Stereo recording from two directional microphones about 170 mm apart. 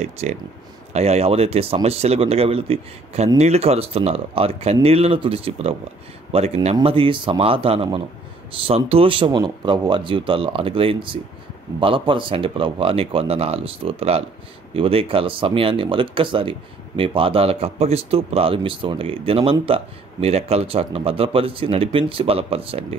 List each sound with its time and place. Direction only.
0.0 s speech: 40° right (ahead or behind)